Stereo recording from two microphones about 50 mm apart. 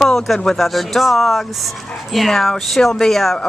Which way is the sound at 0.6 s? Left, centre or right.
Centre.